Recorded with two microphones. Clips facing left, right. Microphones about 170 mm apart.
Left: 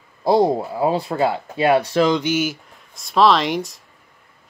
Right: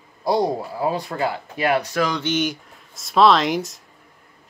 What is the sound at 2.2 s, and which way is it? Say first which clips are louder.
Speech: left 2 dB; 5° left (ahead or behind).